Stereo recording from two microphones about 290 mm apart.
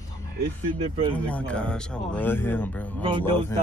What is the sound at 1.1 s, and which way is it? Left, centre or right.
Speech, centre.